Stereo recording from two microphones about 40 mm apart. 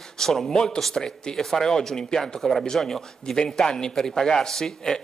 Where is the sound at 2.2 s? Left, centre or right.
Centre.